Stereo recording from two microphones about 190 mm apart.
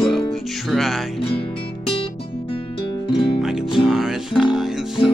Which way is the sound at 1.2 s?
30° left (ahead or behind).